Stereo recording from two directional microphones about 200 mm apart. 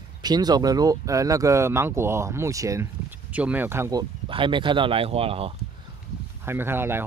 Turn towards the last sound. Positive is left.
turn(degrees=-10)  # may be behind; listen again after turning